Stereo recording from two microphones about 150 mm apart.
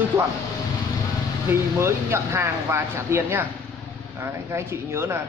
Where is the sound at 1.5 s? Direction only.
15° right (ahead or behind).